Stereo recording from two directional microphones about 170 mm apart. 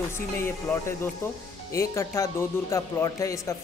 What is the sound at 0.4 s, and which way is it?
Speech, 15° left (ahead or behind).